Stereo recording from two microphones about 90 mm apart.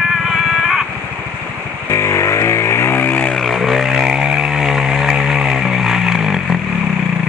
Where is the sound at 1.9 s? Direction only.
35° left (ahead or behind).